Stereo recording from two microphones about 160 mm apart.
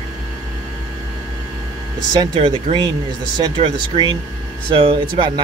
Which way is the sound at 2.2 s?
30° right (ahead or behind).